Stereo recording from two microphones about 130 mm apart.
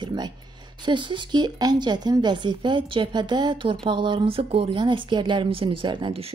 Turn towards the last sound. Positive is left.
turn(degrees=-45)  # may be behind; listen again after turning